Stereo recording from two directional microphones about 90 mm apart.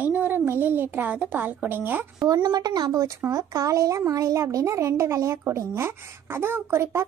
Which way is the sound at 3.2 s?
35° right (ahead or behind).